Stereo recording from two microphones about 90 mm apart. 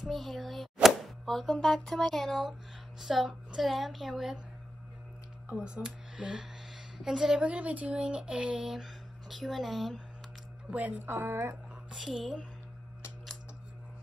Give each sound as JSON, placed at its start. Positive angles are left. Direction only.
{"t": 0.0, "sound": "a woman's voice", "side_deg": 0}
{"t": 5.5, "sound": "speech", "side_deg": -10}
{"t": 10.7, "sound": "a woman's voice", "side_deg": -20}
{"t": 11.9, "sound": "speech", "side_deg": -10}